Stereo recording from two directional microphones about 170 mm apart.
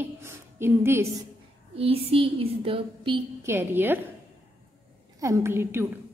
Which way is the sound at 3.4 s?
15° right (ahead or behind).